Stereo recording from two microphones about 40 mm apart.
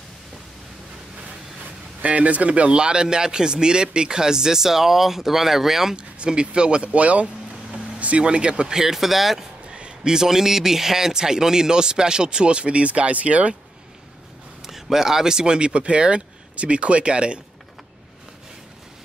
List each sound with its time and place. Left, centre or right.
2.0 s a man's voice: right; by 5.9 s centre
5.9 s speech: right
8.7 s a man's voice: centre
9.7 s a sound: right
10.1 s speech: centre; by 13.6 s right
14.7 s speech: centre; by 17.4 s right